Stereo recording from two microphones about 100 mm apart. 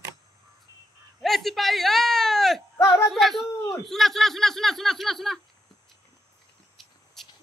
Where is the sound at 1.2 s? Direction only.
Centre (ahead or behind).